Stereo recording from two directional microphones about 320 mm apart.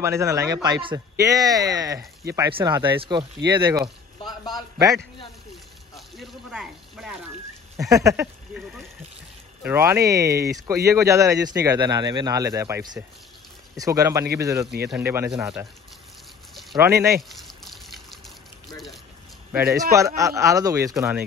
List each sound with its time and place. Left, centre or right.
0.0 s speech: centre
4.2 s a sound: centre
4.7 s speech: centre
5.9 s a sound: centre
7.7 s speech: centre
9.6 s speech: centre
16.7 s water: centre
19.5 s speech: centre